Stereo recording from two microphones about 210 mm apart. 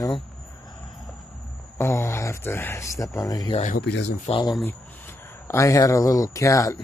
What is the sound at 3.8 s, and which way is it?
Speech, 55° left (ahead or behind).